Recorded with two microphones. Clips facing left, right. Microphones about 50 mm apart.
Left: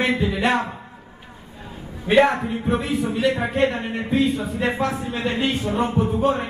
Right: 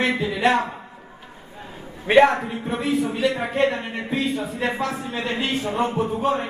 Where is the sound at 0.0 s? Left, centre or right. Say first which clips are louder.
Even; centre.